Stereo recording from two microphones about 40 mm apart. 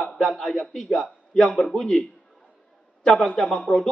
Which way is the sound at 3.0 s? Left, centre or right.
Centre.